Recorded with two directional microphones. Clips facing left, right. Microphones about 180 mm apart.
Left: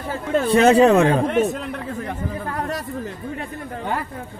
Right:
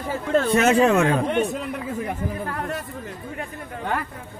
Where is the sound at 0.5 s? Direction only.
35° left (ahead or behind).